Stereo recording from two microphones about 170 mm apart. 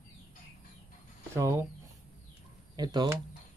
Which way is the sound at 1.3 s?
15° right (ahead or behind).